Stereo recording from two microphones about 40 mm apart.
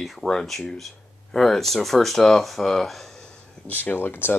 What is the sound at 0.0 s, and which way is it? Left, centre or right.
Speech, centre.